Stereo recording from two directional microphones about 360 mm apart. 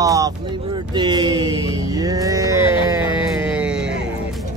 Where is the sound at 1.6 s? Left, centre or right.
Centre.